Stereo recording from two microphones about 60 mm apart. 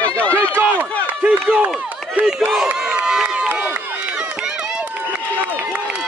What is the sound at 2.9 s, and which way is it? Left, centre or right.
Run, centre.